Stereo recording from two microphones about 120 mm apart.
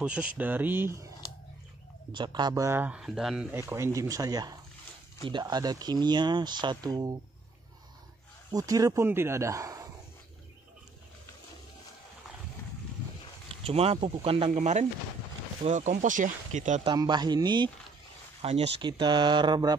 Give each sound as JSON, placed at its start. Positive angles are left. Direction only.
{"t": 0.0, "sound": "speech", "side_deg": -10}
{"t": 2.1, "sound": "speech", "side_deg": -40}
{"t": 2.8, "sound": "speech", "side_deg": -10}
{"t": 3.5, "sound": "speech", "side_deg": -25}
{"t": 8.5, "sound": "speech", "side_deg": -30}
{"t": 13.5, "sound": "speech", "side_deg": -55}
{"t": 14.6, "sound": "speech", "side_deg": -70}
{"t": 15.6, "sound": "speech", "side_deg": -85}
{"t": 16.8, "sound": "speech", "side_deg": -35}
{"t": 18.4, "sound": "speech", "side_deg": -60}
{"t": 18.8, "sound": "speech", "side_deg": -40}